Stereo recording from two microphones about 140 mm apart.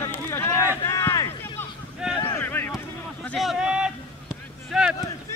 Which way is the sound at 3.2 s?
Centre (ahead or behind).